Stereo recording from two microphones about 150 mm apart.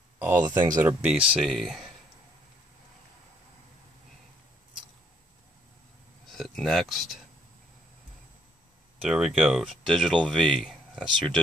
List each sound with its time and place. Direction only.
0.2 s speech: 20° right (ahead or behind)
0.7 s speech: 10° right (ahead or behind)
6.3 s speech: centre (ahead or behind)
9.1 s speech: centre (ahead or behind)